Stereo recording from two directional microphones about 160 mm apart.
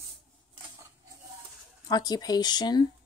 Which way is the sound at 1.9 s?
25° left (ahead or behind).